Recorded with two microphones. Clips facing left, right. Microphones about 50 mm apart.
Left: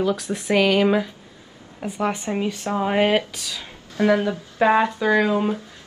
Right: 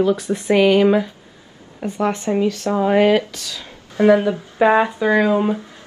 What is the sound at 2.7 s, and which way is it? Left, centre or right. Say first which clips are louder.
Speech: right 4 dB; centre.